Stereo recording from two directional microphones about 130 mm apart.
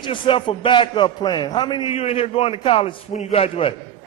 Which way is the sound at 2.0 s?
50° left (ahead or behind).